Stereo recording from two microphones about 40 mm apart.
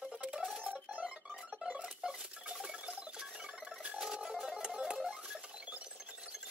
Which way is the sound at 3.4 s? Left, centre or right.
Right.